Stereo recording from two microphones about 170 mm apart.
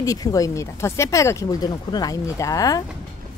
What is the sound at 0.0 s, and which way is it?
A woman's voice, 20° left (ahead or behind).